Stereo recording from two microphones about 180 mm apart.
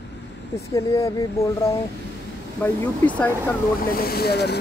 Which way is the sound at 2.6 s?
10° left (ahead or behind).